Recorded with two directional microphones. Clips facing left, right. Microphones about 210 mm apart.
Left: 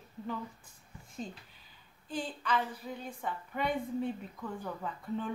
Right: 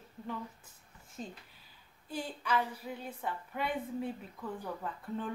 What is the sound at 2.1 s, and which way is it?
A woman's voice, 10° right (ahead or behind).